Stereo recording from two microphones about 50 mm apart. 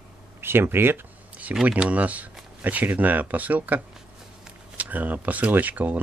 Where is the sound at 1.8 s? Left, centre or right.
Right.